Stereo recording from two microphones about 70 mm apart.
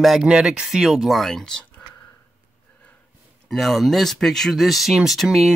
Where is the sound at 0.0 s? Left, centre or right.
Centre.